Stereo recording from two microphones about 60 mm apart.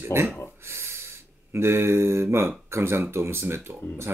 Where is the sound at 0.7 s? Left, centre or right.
Right.